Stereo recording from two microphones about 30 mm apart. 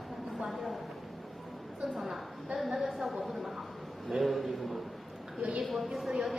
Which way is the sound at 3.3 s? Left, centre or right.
Centre.